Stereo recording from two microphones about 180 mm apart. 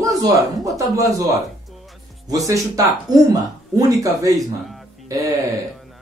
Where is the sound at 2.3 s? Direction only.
20° right (ahead or behind).